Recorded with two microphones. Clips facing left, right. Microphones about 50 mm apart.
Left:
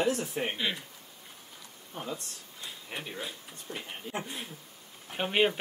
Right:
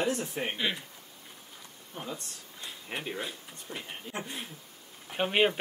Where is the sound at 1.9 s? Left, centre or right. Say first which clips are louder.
Left 1 dB; centre.